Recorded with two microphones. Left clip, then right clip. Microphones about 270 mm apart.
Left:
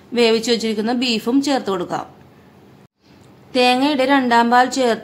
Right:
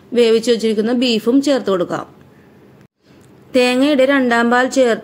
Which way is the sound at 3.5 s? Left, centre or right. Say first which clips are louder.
Right 2 dB; centre.